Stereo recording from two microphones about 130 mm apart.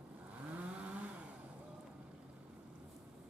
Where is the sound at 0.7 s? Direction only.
10° right (ahead or behind).